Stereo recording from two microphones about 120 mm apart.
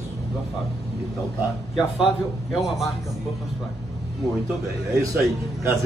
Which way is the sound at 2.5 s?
Centre (ahead or behind).